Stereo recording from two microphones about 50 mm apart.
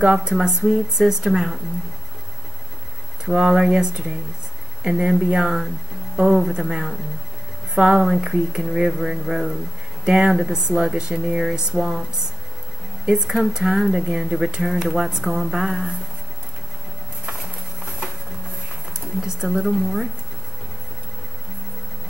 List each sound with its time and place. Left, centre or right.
0.0 s speech: centre
3.3 s speech: centre
5.4 s speech: centre
13.0 s speech: centre
19.2 s speech: centre